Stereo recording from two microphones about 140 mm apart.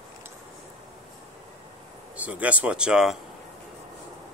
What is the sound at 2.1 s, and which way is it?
Speech, 10° right (ahead or behind).